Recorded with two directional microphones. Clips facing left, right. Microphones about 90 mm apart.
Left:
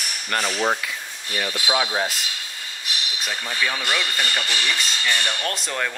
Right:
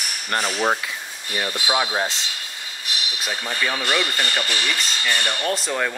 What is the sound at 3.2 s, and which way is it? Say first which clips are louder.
Speech: right 1 dB; 5° right (ahead or behind).